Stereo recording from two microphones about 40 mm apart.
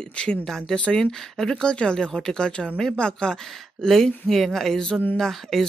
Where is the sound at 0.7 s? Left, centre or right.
Left.